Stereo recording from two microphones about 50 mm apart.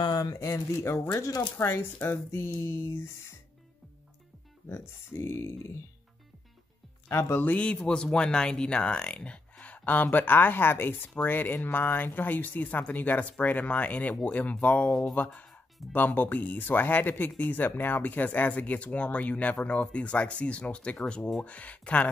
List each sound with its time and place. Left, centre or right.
0.4 s speech: left
0.7 s speech: left
4.6 s speech: left
7.1 s speech: left
7.5 s speech: left
15.5 s music: left
16.2 s speech: left